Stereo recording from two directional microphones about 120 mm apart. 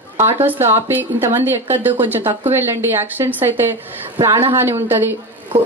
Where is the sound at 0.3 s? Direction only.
20° right (ahead or behind).